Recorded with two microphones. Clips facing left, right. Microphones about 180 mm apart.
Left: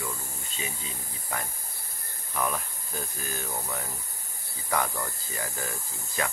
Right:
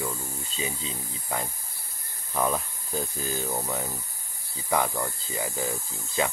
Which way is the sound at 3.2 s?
20° right (ahead or behind).